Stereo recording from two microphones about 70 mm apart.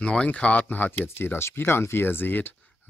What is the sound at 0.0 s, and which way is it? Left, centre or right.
Speech, centre.